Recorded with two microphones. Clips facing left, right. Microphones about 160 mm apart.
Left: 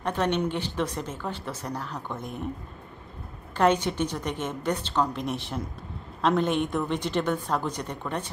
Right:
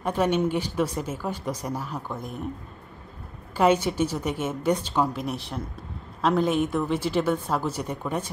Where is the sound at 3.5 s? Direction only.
10° right (ahead or behind).